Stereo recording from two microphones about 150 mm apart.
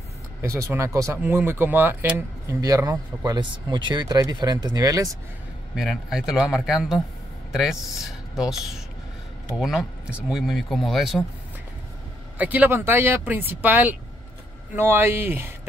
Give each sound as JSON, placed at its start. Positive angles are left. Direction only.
{"t": 0.4, "sound": "speech", "side_deg": -20}
{"t": 5.8, "sound": "speech", "side_deg": 0}
{"t": 12.4, "sound": "speech", "side_deg": -10}